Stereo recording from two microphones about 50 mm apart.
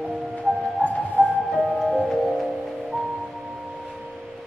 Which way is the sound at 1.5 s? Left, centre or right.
Centre.